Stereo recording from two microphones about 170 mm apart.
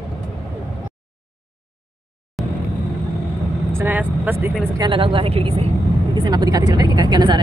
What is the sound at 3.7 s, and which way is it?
Vehicle, 10° right (ahead or behind).